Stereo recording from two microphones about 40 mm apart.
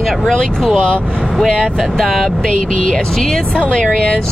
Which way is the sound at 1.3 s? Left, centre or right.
Centre.